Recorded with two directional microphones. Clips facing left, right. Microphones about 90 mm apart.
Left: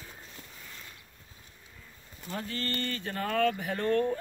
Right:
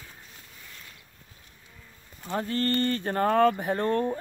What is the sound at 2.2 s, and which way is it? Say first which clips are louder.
Speech: right 8 dB; 40° right (ahead or behind).